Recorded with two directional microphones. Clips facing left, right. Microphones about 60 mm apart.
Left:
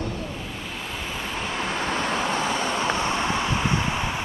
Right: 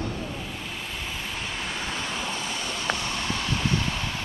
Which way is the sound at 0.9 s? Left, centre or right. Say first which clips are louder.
Left 5 dB; centre.